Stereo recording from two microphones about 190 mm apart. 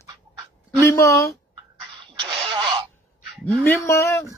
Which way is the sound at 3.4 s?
10° left (ahead or behind).